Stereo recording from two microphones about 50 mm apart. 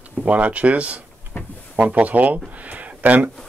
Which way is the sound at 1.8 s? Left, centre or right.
Right.